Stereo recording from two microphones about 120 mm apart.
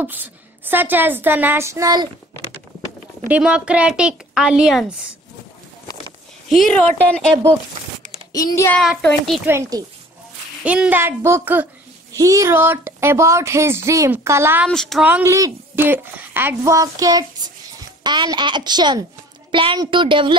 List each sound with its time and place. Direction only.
0.0 s a woman's voice: 15° right (ahead or behind)
3.3 s a woman's voice: 10° right (ahead or behind)
6.5 s a woman's voice: 5° left (ahead or behind)
8.3 s a child's voice: 30° left (ahead or behind)
8.8 s a child's voice: centre (ahead or behind)
9.5 s speech: 30° right (ahead or behind)
10.6 s a woman's voice: 10° right (ahead or behind)
14.7 s a child's voice: 5° left (ahead or behind)
15.0 s a woman's voice: 10° right (ahead or behind)
15.2 s a woman's voice: 25° right (ahead or behind); by 20.3 s 45° right (ahead or behind)